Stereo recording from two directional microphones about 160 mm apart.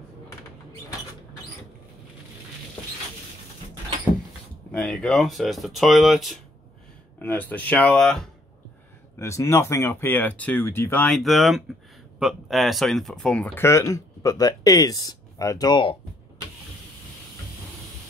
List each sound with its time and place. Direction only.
4.7 s speech: 5° left (ahead or behind)
7.2 s speech: 10° left (ahead or behind)
9.2 s speech: 15° left (ahead or behind)